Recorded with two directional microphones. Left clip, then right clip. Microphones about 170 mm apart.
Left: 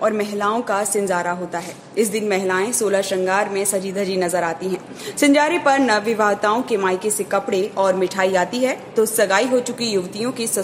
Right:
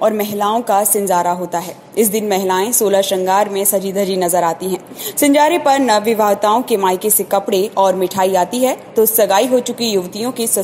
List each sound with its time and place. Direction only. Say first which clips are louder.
0.0 s a woman's voice: right 4 dB; 15° right (ahead or behind)